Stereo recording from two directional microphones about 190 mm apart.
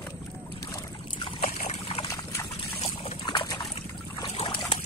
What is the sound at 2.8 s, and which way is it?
Trickle, 25° left (ahead or behind).